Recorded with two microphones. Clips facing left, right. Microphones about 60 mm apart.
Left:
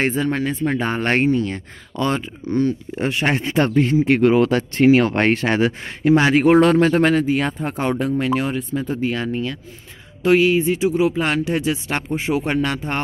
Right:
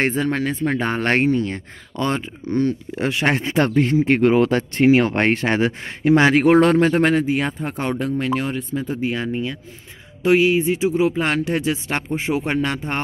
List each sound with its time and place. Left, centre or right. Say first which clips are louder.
0.0 s speech: even; right
1.5 s speech: left 1 dB; right
3.0 s speech: right 1 dB; right
3.7 s speech: left 1 dB; right
4.0 s speech: left 1 dB; right
6.1 s speech: right 1 dB; right
7.0 s speech: left 1 dB; right
7.6 s speech: left 2 dB; centre
9.0 s speech: left 1 dB; centre
10.8 s speech: left 1 dB; right